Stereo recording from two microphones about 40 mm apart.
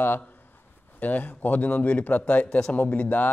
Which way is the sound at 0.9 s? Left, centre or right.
Left.